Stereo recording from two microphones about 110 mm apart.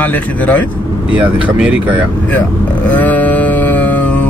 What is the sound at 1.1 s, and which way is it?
Speech, 15° right (ahead or behind).